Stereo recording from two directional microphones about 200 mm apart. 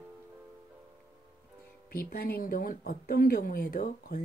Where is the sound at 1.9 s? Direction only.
50° left (ahead or behind).